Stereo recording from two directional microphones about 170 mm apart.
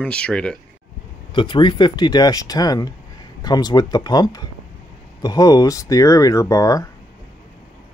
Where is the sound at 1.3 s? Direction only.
30° left (ahead or behind).